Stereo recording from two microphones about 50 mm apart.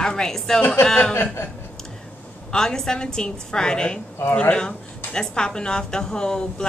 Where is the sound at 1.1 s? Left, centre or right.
Left.